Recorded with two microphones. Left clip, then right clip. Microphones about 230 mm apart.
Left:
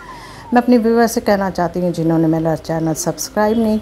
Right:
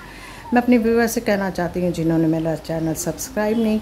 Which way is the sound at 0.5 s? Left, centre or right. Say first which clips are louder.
Left 4 dB; centre.